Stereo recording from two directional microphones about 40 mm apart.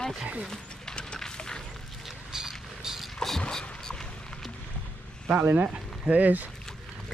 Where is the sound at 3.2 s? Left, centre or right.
Centre.